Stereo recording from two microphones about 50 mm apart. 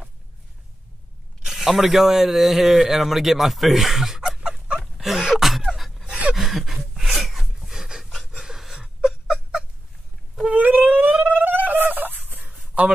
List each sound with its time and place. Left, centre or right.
1.4 s speech: centre
4.4 s dog: centre
4.9 s a sound: centre
5.8 s pant: centre
6.3 s a sound: centre
10.5 s turkey: right